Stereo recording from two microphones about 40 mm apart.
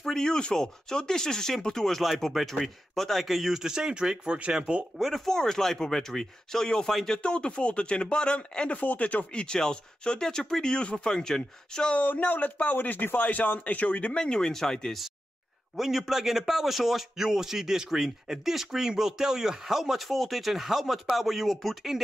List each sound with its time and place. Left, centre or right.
0.0 s speech: centre
3.6 s a man's voice: centre
4.9 s speech: centre
5.2 s speech: centre
7.2 s speech: left
8.7 s speech: left; by 11.9 s centre
11.9 s speech: left
12.7 s speech: left
14.2 s speech: centre
15.7 s a man's voice: centre